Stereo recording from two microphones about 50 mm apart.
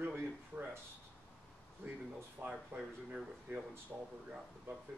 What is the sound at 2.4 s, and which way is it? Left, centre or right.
Speech, right.